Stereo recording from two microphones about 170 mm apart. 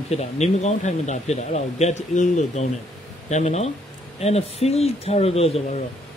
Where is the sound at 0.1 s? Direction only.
40° left (ahead or behind).